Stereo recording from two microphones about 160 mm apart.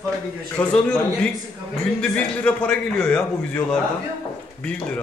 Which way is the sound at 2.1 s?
10° left (ahead or behind).